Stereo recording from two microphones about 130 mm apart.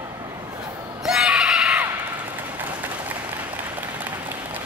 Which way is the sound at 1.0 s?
5° right (ahead or behind).